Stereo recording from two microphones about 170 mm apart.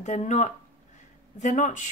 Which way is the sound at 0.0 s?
45° left (ahead or behind).